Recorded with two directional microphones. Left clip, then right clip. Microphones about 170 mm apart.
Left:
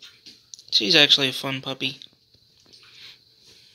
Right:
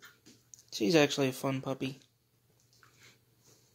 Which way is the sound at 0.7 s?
15° right (ahead or behind).